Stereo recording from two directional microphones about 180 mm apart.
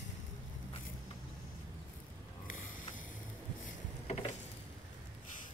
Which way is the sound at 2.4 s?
50° left (ahead or behind).